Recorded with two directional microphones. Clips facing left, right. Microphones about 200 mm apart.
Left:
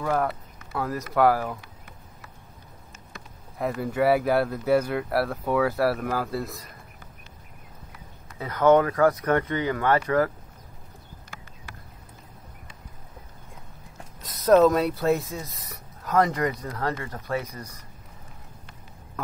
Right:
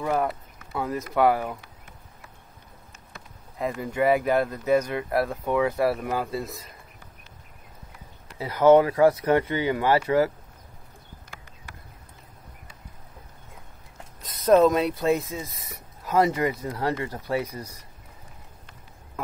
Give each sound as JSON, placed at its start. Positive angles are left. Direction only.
{"t": 0.0, "sound": "speech", "side_deg": -5}
{"t": 3.9, "sound": "speech", "side_deg": -15}
{"t": 4.5, "sound": "speech", "side_deg": 5}
{"t": 4.9, "sound": "speech", "side_deg": -15}
{"t": 5.7, "sound": "speech", "side_deg": 0}
{"t": 6.0, "sound": "speech", "side_deg": -20}
{"t": 6.3, "sound": "speech", "side_deg": 0}
{"t": 8.4, "sound": "speech", "side_deg": -10}
{"t": 14.2, "sound": "speech", "side_deg": 0}